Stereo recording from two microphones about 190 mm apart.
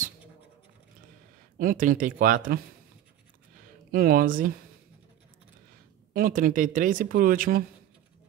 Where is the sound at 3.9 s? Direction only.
50° right (ahead or behind).